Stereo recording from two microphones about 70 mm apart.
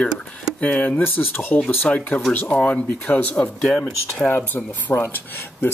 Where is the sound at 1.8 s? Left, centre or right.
Centre.